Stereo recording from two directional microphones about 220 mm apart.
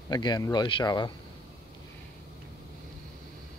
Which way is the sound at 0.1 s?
20° left (ahead or behind).